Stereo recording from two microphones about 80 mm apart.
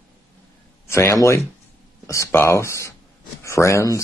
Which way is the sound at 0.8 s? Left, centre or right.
Left.